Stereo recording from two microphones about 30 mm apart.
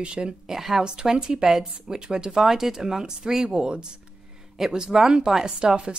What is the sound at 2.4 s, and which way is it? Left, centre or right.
Speech, centre.